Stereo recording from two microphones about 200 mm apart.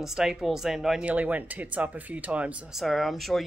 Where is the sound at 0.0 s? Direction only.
Centre (ahead or behind).